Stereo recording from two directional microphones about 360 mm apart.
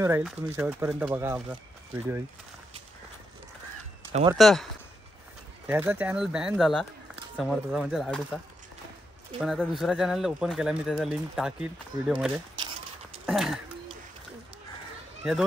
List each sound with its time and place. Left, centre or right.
0.0 s speech: centre
4.1 s speech: centre
4.4 s speech: centre
5.7 s speech: centre
9.4 s speech: centre